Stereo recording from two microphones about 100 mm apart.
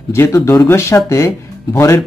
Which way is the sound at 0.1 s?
25° left (ahead or behind).